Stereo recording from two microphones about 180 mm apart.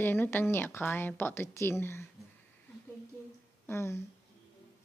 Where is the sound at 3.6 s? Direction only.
15° left (ahead or behind).